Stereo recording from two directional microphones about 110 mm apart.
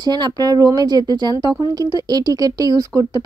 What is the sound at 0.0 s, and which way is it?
Speech, 40° right (ahead or behind).